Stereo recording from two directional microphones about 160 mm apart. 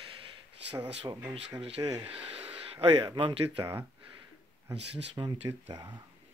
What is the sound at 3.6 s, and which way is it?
Speech, 15° right (ahead or behind).